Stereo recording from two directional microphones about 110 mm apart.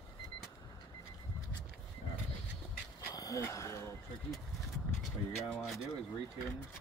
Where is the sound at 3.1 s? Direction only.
35° left (ahead or behind).